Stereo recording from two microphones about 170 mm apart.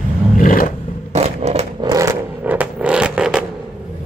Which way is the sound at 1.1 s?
40° right (ahead or behind).